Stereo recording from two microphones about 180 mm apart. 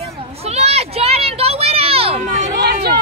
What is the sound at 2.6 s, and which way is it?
Vehicle, 65° right (ahead or behind).